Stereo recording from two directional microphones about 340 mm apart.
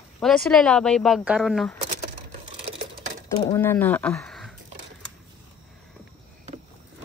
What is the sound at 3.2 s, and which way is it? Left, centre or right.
Speech, centre.